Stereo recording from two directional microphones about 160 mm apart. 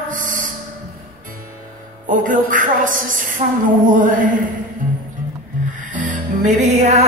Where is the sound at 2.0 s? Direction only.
55° right (ahead or behind).